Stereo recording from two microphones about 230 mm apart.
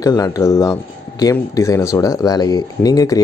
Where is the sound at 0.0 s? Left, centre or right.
Centre.